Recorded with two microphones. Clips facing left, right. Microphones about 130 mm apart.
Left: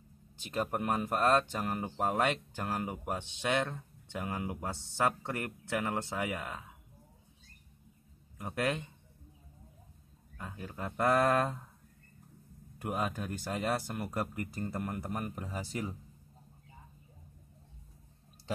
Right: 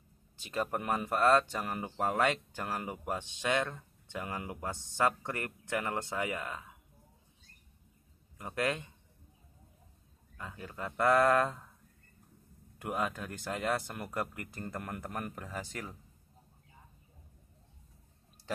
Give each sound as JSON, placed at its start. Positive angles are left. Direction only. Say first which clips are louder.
{"t": 0.5, "sound": "speech", "louder": "left 1 dB", "side_deg": 15}
{"t": 8.4, "sound": "speech", "louder": "even", "side_deg": 15}
{"t": 10.3, "sound": "speech", "louder": "left 1 dB", "side_deg": 15}
{"t": 12.8, "sound": "speech", "louder": "even", "side_deg": 15}